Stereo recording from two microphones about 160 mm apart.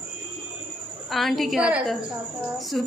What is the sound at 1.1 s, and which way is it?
A woman's voice, centre (ahead or behind).